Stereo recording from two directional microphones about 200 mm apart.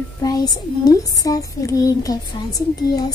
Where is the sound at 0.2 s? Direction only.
20° left (ahead or behind).